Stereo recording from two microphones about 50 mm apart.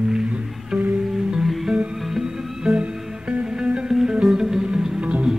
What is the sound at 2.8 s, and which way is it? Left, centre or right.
Music, centre.